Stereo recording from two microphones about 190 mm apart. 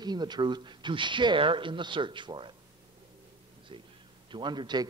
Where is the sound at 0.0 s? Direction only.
20° right (ahead or behind).